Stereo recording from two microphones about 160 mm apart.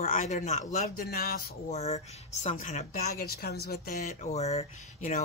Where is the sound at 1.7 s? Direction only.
40° left (ahead or behind).